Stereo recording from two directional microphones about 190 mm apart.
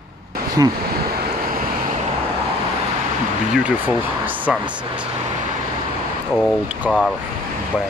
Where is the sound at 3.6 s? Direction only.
10° right (ahead or behind).